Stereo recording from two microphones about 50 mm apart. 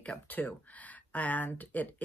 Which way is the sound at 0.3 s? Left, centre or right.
Left.